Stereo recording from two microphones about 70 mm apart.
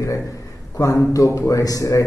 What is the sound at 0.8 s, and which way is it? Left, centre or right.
A man's voice, left.